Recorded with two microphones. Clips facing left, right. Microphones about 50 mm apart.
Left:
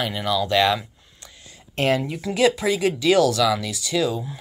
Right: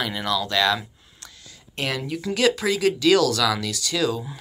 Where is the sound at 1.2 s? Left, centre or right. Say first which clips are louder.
Even; left.